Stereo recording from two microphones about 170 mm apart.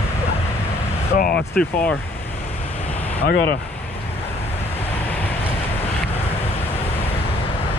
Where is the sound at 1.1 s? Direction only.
55° left (ahead or behind).